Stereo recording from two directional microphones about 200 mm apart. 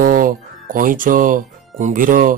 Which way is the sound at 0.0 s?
45° right (ahead or behind).